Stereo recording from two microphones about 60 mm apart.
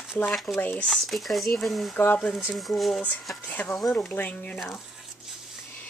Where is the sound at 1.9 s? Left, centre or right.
Left.